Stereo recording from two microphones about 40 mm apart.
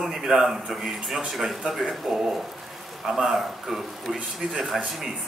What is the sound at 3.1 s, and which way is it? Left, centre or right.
A man's voice, centre.